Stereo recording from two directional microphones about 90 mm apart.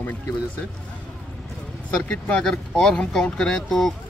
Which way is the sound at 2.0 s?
10° left (ahead or behind).